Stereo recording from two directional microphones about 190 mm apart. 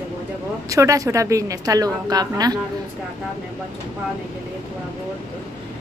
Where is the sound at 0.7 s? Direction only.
15° right (ahead or behind).